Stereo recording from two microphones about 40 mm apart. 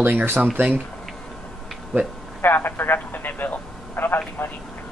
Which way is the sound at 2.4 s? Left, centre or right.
Left.